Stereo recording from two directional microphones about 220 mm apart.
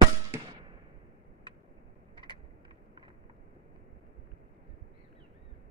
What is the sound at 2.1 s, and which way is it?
Vehicle, 20° right (ahead or behind).